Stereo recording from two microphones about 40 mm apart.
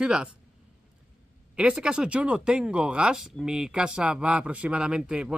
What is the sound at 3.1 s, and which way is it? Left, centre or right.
Speech, centre.